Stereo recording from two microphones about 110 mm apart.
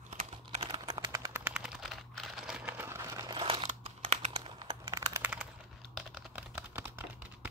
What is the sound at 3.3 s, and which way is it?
Crumpling, 50° right (ahead or behind).